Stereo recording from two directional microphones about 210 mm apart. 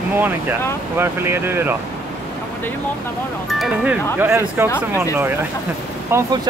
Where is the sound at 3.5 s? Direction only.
Centre (ahead or behind).